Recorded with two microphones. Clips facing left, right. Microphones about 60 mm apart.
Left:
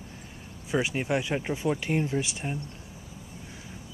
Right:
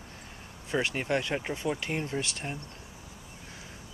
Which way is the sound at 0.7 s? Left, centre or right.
Centre.